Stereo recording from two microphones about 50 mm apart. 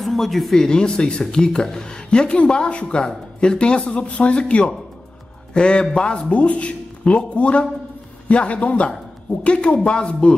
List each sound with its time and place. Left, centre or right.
0.0 s a man's voice: centre